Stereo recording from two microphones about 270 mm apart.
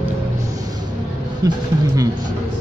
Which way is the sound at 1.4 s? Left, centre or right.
Centre.